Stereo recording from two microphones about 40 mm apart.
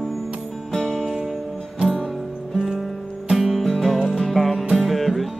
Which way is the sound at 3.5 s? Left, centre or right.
Centre.